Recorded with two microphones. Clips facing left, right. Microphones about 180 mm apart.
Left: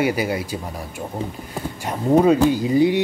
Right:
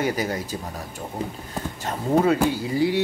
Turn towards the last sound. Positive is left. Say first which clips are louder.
# left 5 dB
turn(degrees=20)  # may be behind; listen again after turning